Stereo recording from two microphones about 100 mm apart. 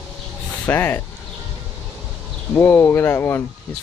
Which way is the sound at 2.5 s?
20° left (ahead or behind).